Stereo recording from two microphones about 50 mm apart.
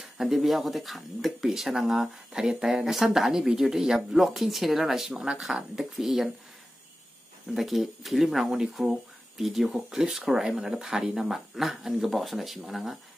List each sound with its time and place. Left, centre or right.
0.0 s speech: centre
7.5 s speech: centre